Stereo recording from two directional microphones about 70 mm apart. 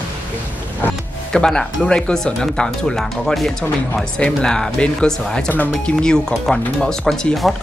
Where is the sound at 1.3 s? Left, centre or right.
Centre.